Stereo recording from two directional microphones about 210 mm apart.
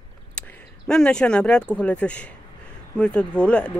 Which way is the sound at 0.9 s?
5° left (ahead or behind).